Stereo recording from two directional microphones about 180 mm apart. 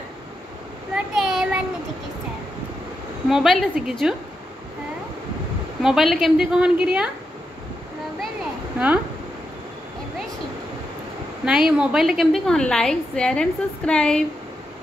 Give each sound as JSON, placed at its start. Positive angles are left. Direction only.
{"t": 0.9, "sound": "child singing", "side_deg": -5}
{"t": 3.3, "sound": "a woman's voice", "side_deg": 0}
{"t": 5.8, "sound": "a woman's voice", "side_deg": 0}
{"t": 8.7, "sound": "speech", "side_deg": -5}
{"t": 11.4, "sound": "a woman's voice", "side_deg": -5}